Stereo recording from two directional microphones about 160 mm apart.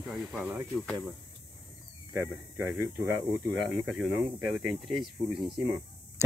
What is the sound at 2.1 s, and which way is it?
Speech, 15° right (ahead or behind).